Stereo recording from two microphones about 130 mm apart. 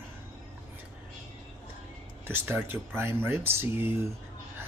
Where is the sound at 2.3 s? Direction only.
15° right (ahead or behind).